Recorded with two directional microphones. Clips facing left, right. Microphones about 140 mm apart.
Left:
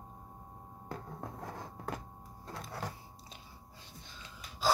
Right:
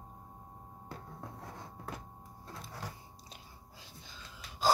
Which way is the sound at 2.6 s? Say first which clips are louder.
Left 4 dB; 65° left (ahead or behind).